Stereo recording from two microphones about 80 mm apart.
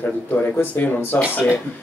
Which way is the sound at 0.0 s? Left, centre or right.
Left.